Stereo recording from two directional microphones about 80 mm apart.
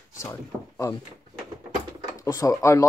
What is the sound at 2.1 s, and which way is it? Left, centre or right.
Speech, left.